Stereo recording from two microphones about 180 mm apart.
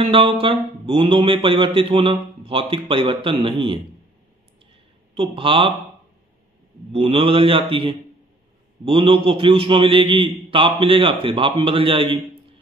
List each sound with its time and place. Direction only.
0.0 s speech: 30° right (ahead or behind)
5.1 s a man's voice: 30° right (ahead or behind)
6.9 s speech: 30° right (ahead or behind)